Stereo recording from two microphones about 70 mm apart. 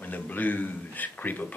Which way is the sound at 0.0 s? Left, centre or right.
Left.